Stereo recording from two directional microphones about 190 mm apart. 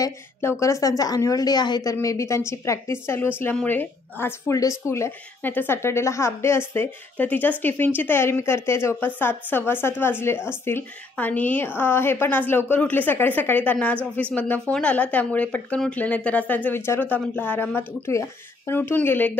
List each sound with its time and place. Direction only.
0.0 s speech: 15° left (ahead or behind)